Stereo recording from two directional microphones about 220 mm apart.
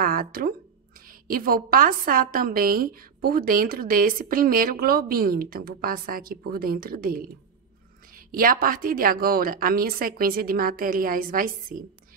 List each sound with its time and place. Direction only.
0.0 s a woman's voice: 40° right (ahead or behind)
8.3 s a woman's voice: 40° right (ahead or behind)